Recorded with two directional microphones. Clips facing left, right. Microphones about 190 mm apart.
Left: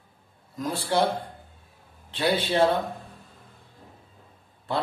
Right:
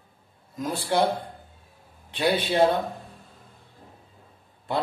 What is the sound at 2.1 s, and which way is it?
Speech, 15° right (ahead or behind).